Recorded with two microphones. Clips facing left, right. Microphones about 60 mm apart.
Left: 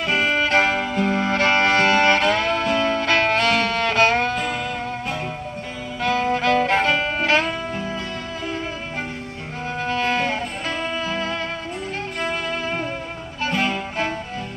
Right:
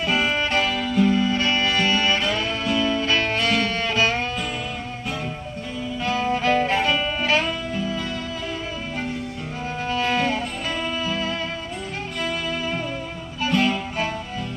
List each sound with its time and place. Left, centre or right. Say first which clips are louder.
0.0 s music: left 2 dB; left
0.4 s music: left 4 dB; left
5.9 s music: left 3 dB; left
7.7 s music: right 1 dB; left
9.8 s music: even; left
13.5 s music: right 2 dB; left